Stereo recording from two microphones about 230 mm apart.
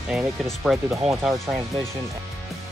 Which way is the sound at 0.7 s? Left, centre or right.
Centre.